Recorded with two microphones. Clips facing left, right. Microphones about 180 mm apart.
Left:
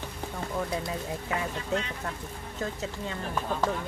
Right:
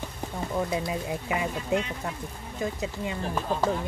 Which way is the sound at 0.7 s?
25° right (ahead or behind).